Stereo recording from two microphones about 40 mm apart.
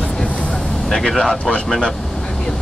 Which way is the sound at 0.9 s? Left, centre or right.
Centre.